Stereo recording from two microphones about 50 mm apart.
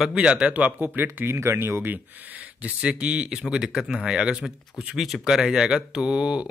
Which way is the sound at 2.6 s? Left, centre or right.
Right.